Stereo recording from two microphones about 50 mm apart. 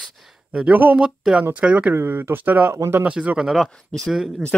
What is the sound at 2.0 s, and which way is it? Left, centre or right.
Speech, right.